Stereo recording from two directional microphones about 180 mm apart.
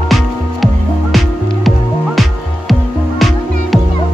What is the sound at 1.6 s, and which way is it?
Music, centre (ahead or behind).